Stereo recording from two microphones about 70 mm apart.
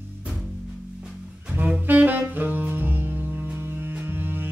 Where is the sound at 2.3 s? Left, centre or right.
Right.